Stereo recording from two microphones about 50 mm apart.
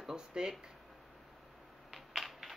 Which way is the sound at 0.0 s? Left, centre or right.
Centre.